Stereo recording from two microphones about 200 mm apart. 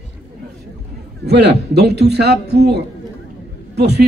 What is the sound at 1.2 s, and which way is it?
A man's voice, 55° right (ahead or behind).